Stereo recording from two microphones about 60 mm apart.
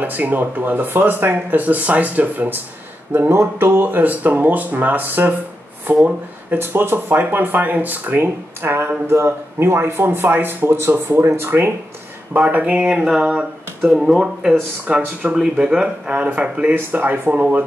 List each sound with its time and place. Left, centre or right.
0.0 s speech: right
12.4 s speech: right
12.9 s speech: centre; by 17.6 s right